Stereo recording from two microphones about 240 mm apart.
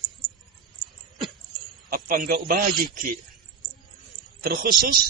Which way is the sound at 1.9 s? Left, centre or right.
Right.